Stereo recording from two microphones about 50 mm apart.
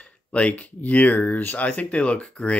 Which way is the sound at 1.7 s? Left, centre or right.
Left.